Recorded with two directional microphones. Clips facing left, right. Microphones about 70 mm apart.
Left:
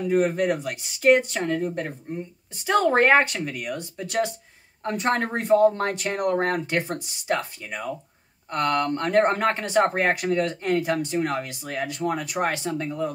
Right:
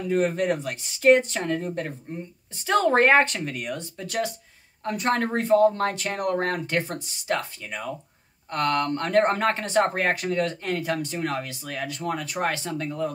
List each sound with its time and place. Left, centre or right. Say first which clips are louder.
0.0 s speech: left 2 dB; centre
3.7 s speech: left 3 dB; left